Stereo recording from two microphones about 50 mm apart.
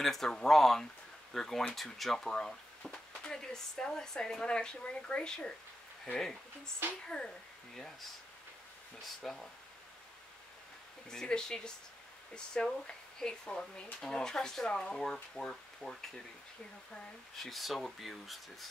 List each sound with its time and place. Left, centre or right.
0.0 s speech: centre
6.8 s speech: right
9.0 s speech: centre
11.1 s speech: centre
17.4 s speech: centre